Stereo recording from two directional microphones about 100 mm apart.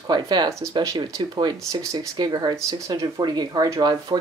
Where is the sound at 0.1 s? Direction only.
45° right (ahead or behind).